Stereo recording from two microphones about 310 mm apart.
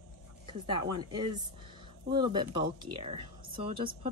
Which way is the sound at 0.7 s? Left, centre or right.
Centre.